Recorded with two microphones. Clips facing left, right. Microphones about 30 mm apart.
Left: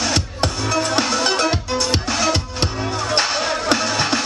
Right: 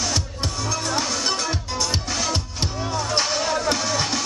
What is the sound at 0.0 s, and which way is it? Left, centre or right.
Music, left.